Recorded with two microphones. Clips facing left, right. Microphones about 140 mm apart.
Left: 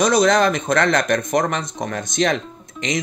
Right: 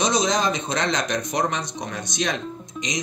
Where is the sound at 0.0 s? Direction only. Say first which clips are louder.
Left 6 dB; 55° left (ahead or behind).